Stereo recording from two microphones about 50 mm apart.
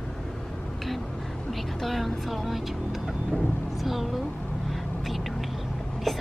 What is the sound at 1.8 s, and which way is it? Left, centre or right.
Music, centre.